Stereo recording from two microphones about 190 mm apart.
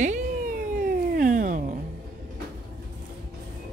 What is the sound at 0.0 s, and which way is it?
Cat, 40° right (ahead or behind).